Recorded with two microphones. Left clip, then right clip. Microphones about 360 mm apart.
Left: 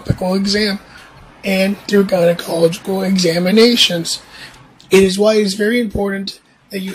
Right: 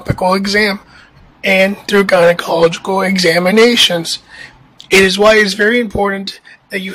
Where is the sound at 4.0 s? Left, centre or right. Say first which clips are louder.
Right 2 dB; centre.